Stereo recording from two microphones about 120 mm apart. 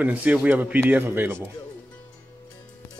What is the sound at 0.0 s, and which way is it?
Speech, 10° right (ahead or behind).